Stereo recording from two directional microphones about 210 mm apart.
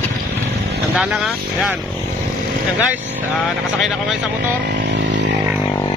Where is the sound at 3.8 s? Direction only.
Centre (ahead or behind).